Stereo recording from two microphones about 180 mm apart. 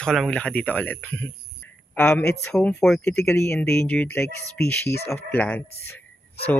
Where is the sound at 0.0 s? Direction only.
5° left (ahead or behind).